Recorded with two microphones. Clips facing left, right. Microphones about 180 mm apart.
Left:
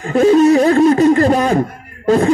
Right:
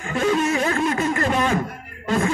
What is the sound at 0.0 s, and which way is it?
Speech, 35° left (ahead or behind).